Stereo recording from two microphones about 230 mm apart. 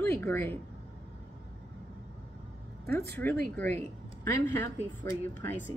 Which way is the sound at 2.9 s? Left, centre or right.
Centre.